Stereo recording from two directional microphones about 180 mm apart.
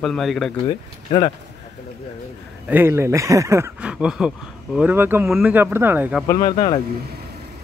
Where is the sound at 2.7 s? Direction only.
15° right (ahead or behind).